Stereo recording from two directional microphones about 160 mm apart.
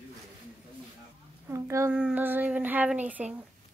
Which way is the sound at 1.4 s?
15° right (ahead or behind).